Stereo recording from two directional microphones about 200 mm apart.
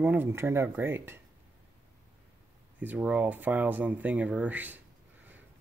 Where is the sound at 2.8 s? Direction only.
5° right (ahead or behind).